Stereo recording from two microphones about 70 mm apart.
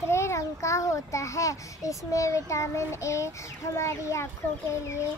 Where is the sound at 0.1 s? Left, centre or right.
Left.